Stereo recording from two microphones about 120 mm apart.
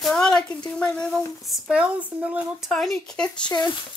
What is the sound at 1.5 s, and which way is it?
Speech, 10° right (ahead or behind).